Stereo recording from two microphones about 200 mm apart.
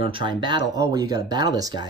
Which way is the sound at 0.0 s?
25° right (ahead or behind).